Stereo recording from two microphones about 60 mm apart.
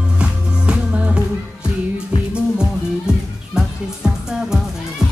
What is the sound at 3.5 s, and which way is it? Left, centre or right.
Music, centre.